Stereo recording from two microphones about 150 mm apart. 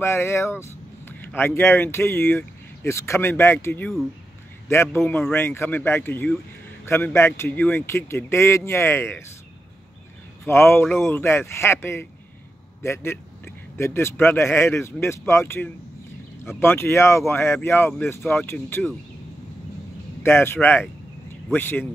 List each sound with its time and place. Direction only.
0.0 s speech: 15° left (ahead or behind)
4.9 s speech: 15° left (ahead or behind)
10.4 s speech: 15° left (ahead or behind)
18.2 s speech: 5° left (ahead or behind)
18.5 s speech: 15° left (ahead or behind)
20.2 s speech: 15° left (ahead or behind)